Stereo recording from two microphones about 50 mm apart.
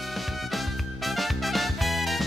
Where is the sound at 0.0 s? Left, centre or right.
Centre.